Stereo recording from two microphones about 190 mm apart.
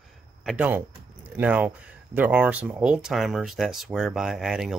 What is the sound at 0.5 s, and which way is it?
Speech, 10° right (ahead or behind).